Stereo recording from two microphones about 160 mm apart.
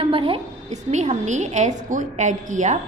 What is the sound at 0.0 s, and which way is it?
A woman's voice, 35° right (ahead or behind).